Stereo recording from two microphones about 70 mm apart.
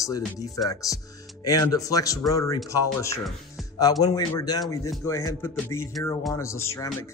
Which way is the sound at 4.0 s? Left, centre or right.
Left.